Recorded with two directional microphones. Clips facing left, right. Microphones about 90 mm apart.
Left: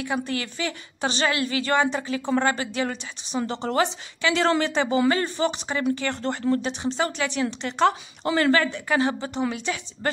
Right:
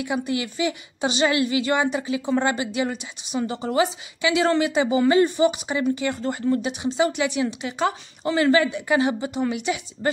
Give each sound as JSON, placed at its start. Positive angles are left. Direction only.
{"t": 0.0, "sound": "a woman's voice", "side_deg": -15}